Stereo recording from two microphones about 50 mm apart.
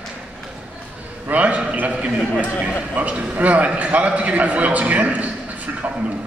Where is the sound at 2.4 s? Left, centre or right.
Right.